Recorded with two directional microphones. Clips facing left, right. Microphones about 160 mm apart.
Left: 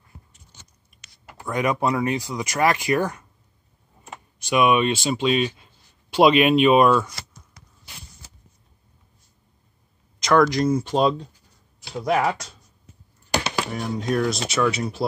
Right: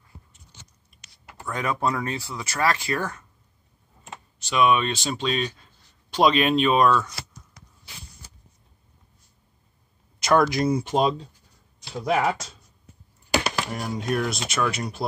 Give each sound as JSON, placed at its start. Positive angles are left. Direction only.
{"t": 1.4, "sound": "speech", "side_deg": 15}
{"t": 4.4, "sound": "speech", "side_deg": 15}
{"t": 10.5, "sound": "speech", "side_deg": -10}